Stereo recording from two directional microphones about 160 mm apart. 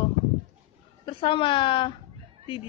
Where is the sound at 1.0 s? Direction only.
30° left (ahead or behind).